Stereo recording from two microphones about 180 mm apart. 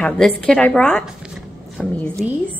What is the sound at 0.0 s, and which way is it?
A woman's voice, 5° left (ahead or behind).